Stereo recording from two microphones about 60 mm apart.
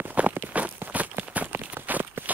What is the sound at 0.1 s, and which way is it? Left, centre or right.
Walk, right.